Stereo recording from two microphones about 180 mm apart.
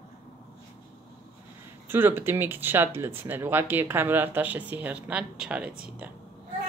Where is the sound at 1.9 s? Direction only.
10° right (ahead or behind).